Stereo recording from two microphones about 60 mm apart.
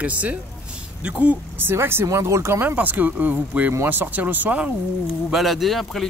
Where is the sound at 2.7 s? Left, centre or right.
Right.